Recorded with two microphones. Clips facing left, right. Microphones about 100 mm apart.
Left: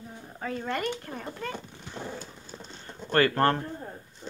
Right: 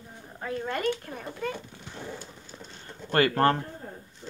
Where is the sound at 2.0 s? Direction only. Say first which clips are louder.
Left 2 dB; 25° left (ahead or behind).